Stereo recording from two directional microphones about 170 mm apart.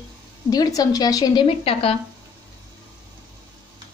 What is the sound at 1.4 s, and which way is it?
Speech, 35° left (ahead or behind).